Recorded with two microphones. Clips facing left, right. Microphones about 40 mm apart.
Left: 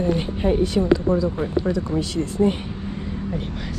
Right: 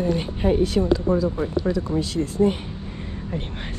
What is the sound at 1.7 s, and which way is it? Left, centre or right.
Speech, left.